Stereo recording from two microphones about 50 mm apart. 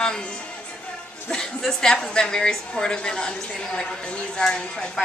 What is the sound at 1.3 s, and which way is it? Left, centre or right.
A woman's voice, centre.